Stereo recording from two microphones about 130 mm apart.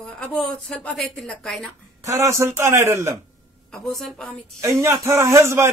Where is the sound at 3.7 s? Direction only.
Centre (ahead or behind).